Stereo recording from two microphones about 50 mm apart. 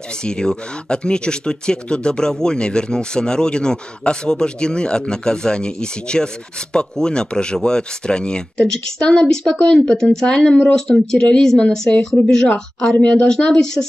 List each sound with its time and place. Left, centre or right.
0.2 s speech: centre